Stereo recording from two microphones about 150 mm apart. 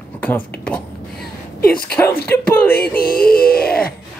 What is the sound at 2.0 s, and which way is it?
Speech, 15° left (ahead or behind).